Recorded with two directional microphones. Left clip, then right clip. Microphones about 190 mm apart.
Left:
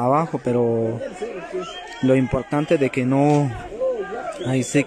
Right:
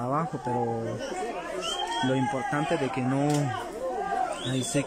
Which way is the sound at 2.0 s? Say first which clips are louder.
Left 12 dB; 25° left (ahead or behind).